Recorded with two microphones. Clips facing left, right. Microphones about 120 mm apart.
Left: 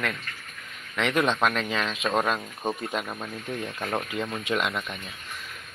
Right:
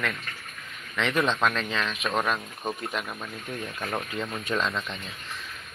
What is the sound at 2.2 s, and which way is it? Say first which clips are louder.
Speech: left 2 dB; 20° left (ahead or behind).